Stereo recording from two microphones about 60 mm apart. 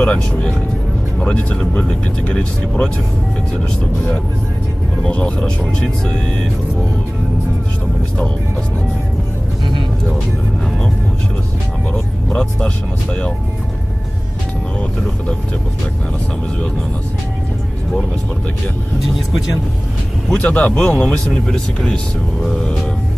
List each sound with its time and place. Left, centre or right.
0.0 s speech: centre
5.0 s speech: centre
12.3 s speech: centre
20.4 s speech: left
21.3 s speech: centre